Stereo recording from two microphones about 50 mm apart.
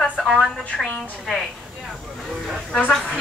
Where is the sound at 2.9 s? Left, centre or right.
Centre.